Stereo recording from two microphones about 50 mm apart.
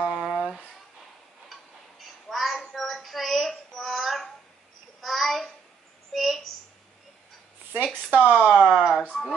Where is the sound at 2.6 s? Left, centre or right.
Centre.